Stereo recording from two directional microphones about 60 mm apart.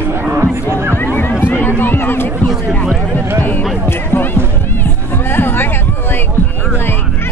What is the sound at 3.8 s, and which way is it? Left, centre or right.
Music, left.